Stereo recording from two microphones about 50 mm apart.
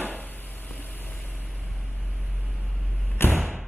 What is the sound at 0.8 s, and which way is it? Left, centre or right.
Vehicle, left.